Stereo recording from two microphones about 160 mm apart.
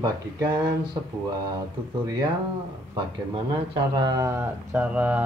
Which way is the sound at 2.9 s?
30° right (ahead or behind).